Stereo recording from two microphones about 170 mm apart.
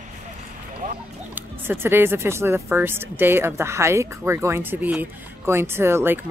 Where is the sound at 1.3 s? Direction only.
15° right (ahead or behind).